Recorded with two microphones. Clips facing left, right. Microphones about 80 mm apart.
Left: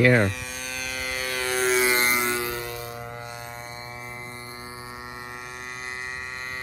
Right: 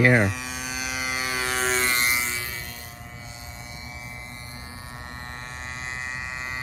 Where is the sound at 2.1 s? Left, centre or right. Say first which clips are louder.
Left 4 dB; left.